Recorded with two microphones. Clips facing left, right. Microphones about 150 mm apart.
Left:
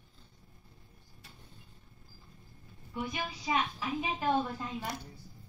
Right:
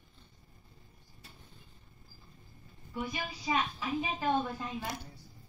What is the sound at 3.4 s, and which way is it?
A woman's voice, 10° left (ahead or behind).